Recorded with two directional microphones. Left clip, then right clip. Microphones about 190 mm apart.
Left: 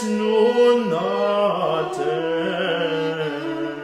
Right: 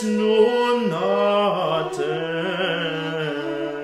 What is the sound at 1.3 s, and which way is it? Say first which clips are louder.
Mantra: even; 25° right (ahead or behind).